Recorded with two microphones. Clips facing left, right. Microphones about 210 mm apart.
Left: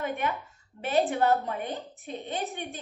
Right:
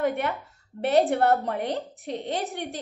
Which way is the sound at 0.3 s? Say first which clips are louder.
Right 2 dB; 65° right (ahead or behind).